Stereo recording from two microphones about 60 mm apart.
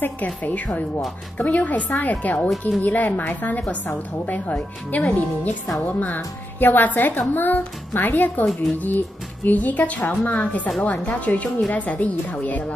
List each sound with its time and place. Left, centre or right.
0.0 s a woman's voice: left